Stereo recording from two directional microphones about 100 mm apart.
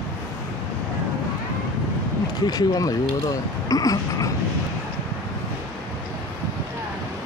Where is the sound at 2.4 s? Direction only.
40° left (ahead or behind).